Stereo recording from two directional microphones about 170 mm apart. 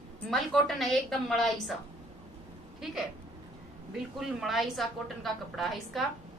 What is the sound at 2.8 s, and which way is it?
Speech, centre (ahead or behind).